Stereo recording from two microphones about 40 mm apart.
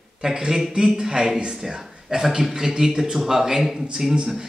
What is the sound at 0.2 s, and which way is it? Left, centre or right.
A man's voice, centre.